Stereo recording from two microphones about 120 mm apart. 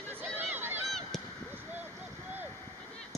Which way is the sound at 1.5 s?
15° right (ahead or behind).